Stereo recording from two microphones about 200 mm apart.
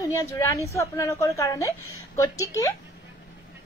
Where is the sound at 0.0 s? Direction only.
15° left (ahead or behind).